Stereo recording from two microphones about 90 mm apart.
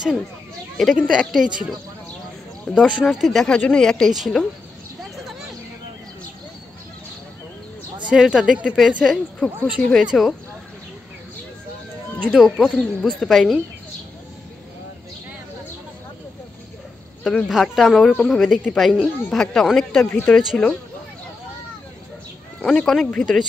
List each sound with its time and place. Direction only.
0.7 s speech: 5° right (ahead or behind)
2.8 s speech: 15° left (ahead or behind)
3.2 s speech: centre (ahead or behind)
3.4 s speech: 10° left (ahead or behind)
8.1 s speech: 10° right (ahead or behind)
12.3 s speech: 5° right (ahead or behind)
12.6 s speech: 5° left (ahead or behind)
17.2 s speech: 10° left (ahead or behind)
17.5 s speech: centre (ahead or behind)
20.1 s speech: 25° left (ahead or behind)
20.3 s speech: 10° left (ahead or behind)
22.6 s speech: 5° left (ahead or behind)